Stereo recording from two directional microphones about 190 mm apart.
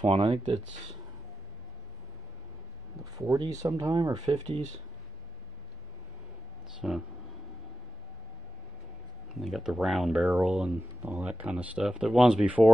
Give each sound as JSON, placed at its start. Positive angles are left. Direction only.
{"t": 0.0, "sound": "speech", "side_deg": -30}
{"t": 3.2, "sound": "speech", "side_deg": -15}
{"t": 6.8, "sound": "speech", "side_deg": -5}
{"t": 9.4, "sound": "speech", "side_deg": 0}